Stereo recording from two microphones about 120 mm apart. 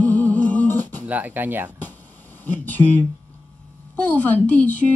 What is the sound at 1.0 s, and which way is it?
Speech, 15° right (ahead or behind).